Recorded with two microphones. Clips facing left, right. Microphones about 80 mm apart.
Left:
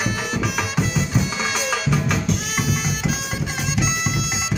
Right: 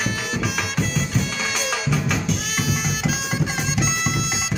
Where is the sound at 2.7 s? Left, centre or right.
Centre.